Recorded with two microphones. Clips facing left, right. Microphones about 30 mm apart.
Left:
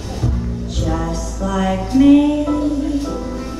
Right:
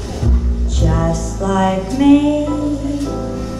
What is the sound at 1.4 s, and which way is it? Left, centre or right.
Music, right.